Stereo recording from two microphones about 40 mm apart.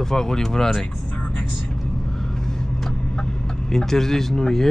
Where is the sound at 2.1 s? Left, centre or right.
Centre.